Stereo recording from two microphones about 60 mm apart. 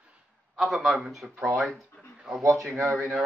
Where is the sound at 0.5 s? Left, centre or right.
Centre.